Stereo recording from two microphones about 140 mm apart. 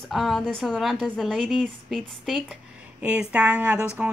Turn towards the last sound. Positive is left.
turn(degrees=-10)  # may be behind; listen again after turning